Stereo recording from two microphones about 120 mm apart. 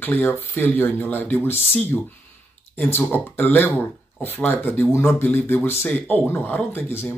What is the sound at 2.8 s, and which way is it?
Speech, 15° left (ahead or behind).